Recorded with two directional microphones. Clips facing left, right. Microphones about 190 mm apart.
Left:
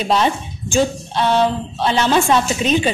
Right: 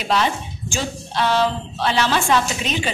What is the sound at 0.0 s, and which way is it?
A woman's voice, 20° left (ahead or behind).